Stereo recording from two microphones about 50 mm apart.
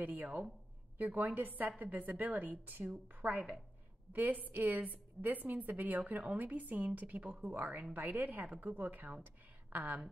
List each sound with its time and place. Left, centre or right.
0.0 s a woman's voice: right
7.9 s a woman's voice: right
9.2 s a sound: right